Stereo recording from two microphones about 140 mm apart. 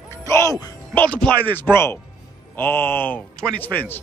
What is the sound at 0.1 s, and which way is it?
Music, 20° left (ahead or behind).